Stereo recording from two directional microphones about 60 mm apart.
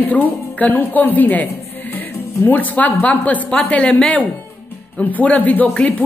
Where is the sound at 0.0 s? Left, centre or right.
Left.